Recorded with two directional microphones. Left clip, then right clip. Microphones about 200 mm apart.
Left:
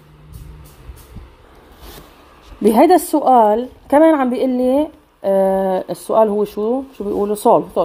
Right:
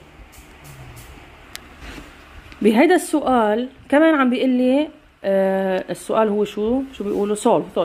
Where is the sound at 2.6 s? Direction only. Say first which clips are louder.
Left 4 dB; 5° left (ahead or behind).